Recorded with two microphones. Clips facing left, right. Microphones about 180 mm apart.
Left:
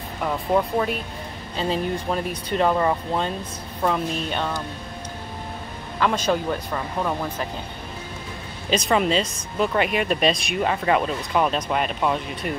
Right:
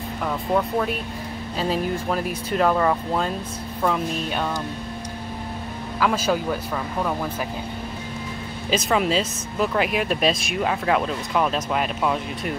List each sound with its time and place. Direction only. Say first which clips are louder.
0.2 s speech: left 1 dB; 5° left (ahead or behind)
3.8 s speech: even; centre (ahead or behind)
5.9 s speech: even; 5° right (ahead or behind)
8.6 s speech: left 1 dB; centre (ahead or behind)